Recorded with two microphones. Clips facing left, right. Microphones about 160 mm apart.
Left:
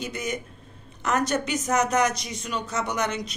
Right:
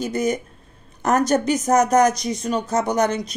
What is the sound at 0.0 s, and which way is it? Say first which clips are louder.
Speech: right 9 dB; 40° right (ahead or behind).